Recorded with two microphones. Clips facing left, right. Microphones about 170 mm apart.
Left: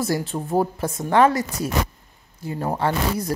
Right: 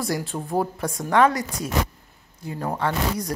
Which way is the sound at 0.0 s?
Centre (ahead or behind).